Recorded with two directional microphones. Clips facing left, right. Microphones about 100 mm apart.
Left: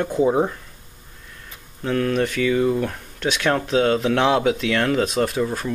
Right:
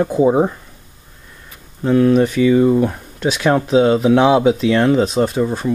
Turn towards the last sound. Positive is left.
turn(degrees=-15)  # may be behind; listen again after turning